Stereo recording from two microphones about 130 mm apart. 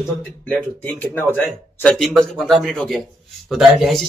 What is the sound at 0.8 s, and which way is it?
A man's voice, 15° left (ahead or behind).